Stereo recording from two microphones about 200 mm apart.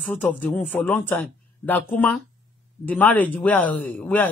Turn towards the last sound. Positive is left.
turn(degrees=5)  # may be behind; listen again after turning